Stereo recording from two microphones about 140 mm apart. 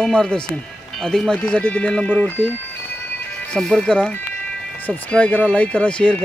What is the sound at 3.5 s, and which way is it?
Speech, 5° left (ahead or behind).